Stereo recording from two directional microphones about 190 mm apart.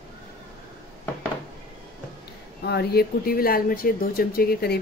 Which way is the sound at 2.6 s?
60° left (ahead or behind).